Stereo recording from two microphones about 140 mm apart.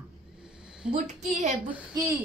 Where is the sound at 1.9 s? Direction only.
25° right (ahead or behind).